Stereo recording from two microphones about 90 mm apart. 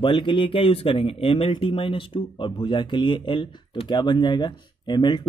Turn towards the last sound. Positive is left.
turn(degrees=55)  # may be behind; listen again after turning